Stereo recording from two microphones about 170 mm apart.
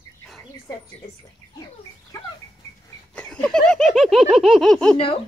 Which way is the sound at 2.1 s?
20° left (ahead or behind).